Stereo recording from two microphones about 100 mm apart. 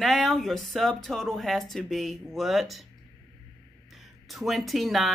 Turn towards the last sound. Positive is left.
turn(degrees=0)  # may be behind; listen again after turning